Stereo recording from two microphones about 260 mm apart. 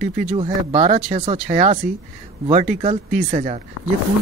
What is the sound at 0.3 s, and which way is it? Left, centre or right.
A man's voice, right.